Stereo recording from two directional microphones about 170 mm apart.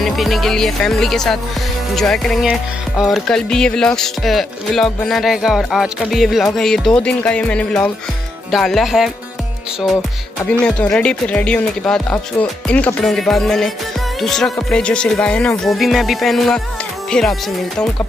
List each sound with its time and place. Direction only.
0.0 s music: centre (ahead or behind)
10.6 s music: 5° left (ahead or behind)